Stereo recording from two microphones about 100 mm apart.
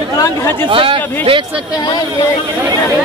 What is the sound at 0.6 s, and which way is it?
Speech, 60° right (ahead or behind).